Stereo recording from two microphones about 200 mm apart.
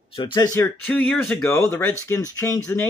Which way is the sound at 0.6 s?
10° left (ahead or behind).